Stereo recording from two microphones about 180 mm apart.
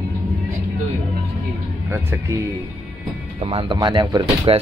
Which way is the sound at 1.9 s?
15° right (ahead or behind).